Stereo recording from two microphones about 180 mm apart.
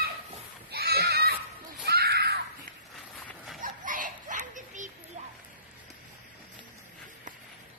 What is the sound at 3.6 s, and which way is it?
Children playing, 45° right (ahead or behind).